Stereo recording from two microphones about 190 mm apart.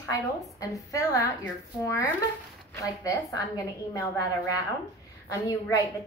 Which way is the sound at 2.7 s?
15° left (ahead or behind).